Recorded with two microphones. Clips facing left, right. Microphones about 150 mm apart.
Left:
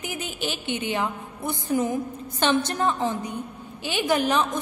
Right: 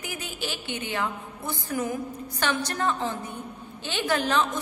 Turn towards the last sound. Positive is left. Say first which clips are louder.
# left 2 dB
turn(degrees=15)  # may be behind; listen again after turning